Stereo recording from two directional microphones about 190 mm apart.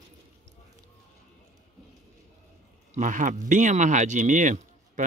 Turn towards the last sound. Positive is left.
turn(degrees=-40)  # may be behind; listen again after turning